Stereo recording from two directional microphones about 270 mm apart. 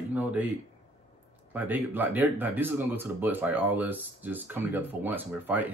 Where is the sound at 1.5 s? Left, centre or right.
Centre.